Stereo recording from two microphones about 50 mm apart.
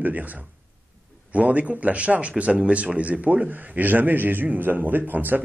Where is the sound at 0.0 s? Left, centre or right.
Right.